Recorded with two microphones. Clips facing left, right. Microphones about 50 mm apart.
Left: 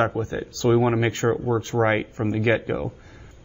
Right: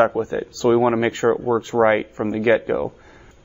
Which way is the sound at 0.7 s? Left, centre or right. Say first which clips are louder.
Right 3 dB; right.